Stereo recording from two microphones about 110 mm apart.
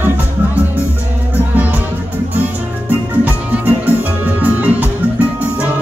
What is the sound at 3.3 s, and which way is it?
Music, 15° right (ahead or behind).